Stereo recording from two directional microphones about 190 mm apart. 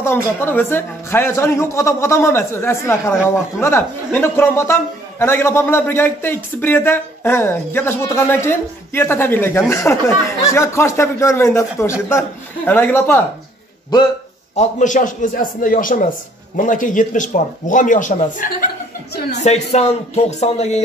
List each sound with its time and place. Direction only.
0.0 s a man's voice: 10° left (ahead or behind)
14.5 s speech: 40° left (ahead or behind)
19.3 s music: 35° left (ahead or behind)